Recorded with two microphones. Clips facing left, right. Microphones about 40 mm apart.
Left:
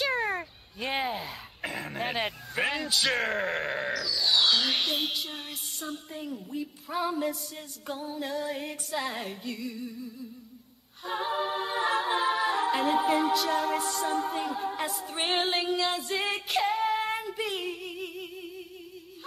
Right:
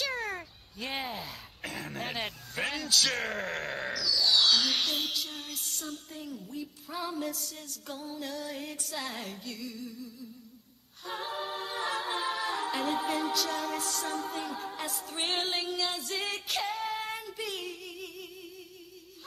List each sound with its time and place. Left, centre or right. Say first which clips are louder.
0.0 s cat: left 6 dB; centre
3.3 s speech: left 5 dB; centre
11.1 s a capella: left 6 dB; centre
16.0 s music: left 5 dB; left